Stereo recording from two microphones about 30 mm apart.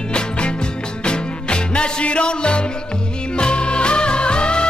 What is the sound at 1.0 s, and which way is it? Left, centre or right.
Music, left.